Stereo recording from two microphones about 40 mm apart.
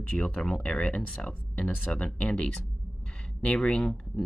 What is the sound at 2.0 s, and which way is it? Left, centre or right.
Speech, left.